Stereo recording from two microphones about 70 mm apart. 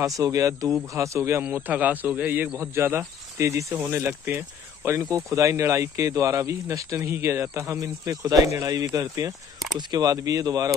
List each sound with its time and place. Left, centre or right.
0.2 s speech: right
1.7 s a man's voice: right
2.6 s speech: right
5.1 s speech: right
9.8 s speech: right